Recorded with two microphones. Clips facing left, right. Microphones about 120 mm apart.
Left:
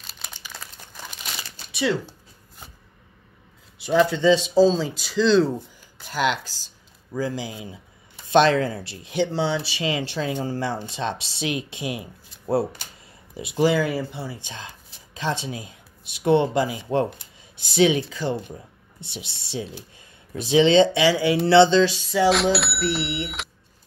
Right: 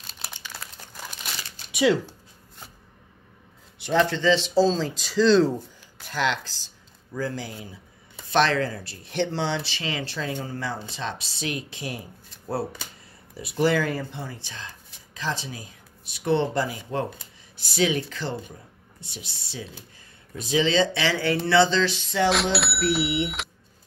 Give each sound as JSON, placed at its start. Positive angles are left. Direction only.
{"t": 0.3, "sound": "crumpling", "side_deg": -10}
{"t": 3.7, "sound": "speech", "side_deg": 5}
{"t": 6.1, "sound": "speech", "side_deg": 10}
{"t": 9.1, "sound": "speech", "side_deg": 5}
{"t": 9.8, "sound": "speech", "side_deg": 15}
{"t": 10.4, "sound": "speech", "side_deg": 30}
{"t": 15.1, "sound": "speech", "side_deg": 25}
{"t": 19.1, "sound": "speech", "side_deg": 25}
{"t": 21.5, "sound": "speech", "side_deg": 25}
{"t": 22.1, "sound": "speech", "side_deg": 5}